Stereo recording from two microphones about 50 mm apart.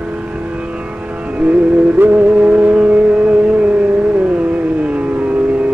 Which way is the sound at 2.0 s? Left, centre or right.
Right.